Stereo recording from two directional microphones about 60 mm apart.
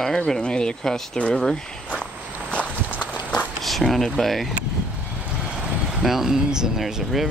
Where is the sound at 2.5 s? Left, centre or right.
Left.